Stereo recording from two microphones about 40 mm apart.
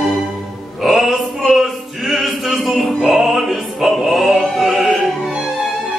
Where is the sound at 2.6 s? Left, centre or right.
Centre.